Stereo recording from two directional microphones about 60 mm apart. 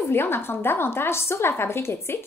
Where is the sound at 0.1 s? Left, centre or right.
Left.